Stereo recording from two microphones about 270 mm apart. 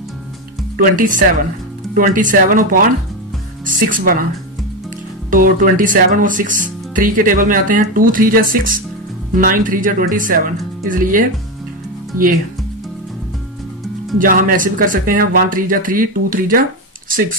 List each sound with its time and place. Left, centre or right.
0.7 s speech: right
5.3 s speech: right
14.1 s speech: right